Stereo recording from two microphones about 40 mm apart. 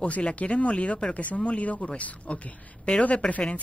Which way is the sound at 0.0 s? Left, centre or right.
Left.